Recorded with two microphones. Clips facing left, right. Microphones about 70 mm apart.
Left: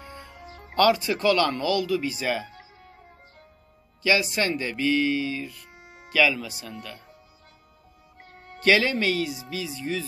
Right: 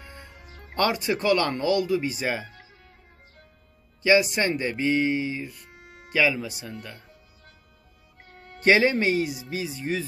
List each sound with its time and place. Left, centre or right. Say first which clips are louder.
0.5 s music: left 3 dB; centre
0.7 s speech: left 4 dB; right
4.0 s speech: right 3 dB; centre
5.7 s music: even; centre
6.1 s speech: left 1 dB; right
8.6 s speech: right 2 dB; right